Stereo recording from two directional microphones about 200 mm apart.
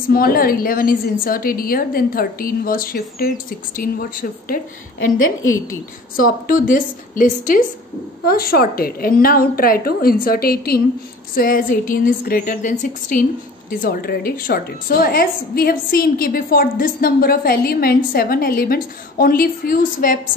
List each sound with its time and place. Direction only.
0.1 s a woman's voice: 45° left (ahead or behind)
5.2 s a woman's voice: 90° left
6.1 s a woman's voice: 45° left (ahead or behind)